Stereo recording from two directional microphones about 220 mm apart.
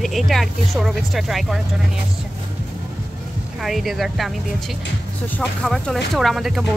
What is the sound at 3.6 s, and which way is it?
Speech, centre (ahead or behind).